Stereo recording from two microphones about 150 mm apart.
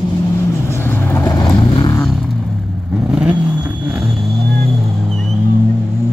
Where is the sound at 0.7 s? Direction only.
15° left (ahead or behind).